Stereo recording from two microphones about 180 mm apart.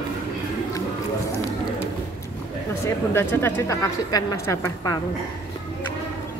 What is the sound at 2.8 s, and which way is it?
Speech, 15° left (ahead or behind).